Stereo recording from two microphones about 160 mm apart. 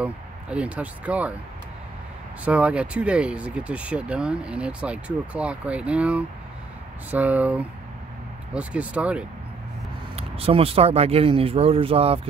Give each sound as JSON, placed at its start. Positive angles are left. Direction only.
{"t": 0.0, "sound": "speech", "side_deg": -5}
{"t": 2.4, "sound": "speech", "side_deg": -10}
{"t": 10.1, "sound": "speech", "side_deg": -35}